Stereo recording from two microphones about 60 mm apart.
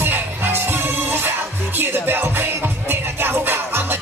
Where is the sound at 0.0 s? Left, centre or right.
Right.